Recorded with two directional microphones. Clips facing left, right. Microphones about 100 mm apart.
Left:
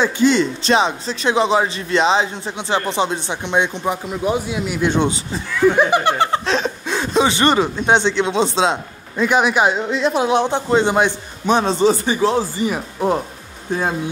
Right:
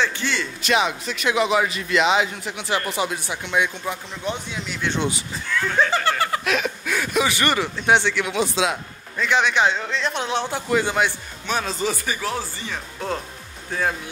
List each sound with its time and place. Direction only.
0.0 s speech: 20° left (ahead or behind)
0.6 s speech: 30° left (ahead or behind)
4.1 s speech: 10° left (ahead or behind)
9.4 s a woman's voice: 10° left (ahead or behind)
10.3 s speech: 20° left (ahead or behind)